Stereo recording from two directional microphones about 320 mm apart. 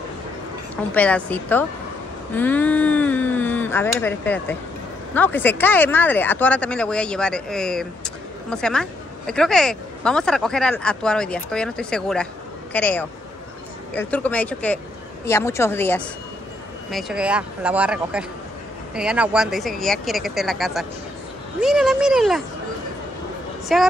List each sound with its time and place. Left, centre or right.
0.9 s a woman's voice: centre
23.7 s speech: centre